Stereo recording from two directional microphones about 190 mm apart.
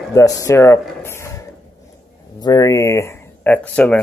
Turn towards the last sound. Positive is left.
turn(degrees=5)  # may be behind; listen again after turning